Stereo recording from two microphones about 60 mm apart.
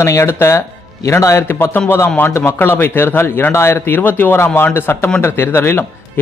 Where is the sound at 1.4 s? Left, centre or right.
Left.